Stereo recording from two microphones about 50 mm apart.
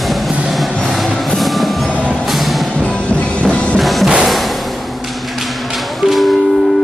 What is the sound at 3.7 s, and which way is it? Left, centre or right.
Music, centre.